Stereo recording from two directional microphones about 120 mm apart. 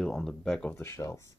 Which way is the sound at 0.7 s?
20° left (ahead or behind).